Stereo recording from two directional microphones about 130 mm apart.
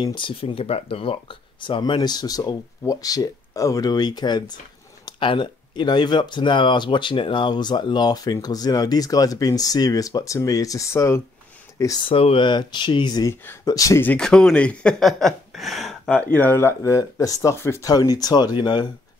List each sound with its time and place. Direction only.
0.0 s speech: 35° left (ahead or behind)
12.1 s speech: 45° left (ahead or behind)
13.3 s speech: 20° left (ahead or behind)
14.0 s speech: 5° left (ahead or behind); by 18.9 s 35° left (ahead or behind)